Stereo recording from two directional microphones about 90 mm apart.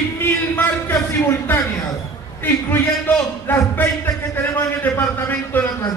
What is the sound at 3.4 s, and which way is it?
A man's voice, 25° left (ahead or behind).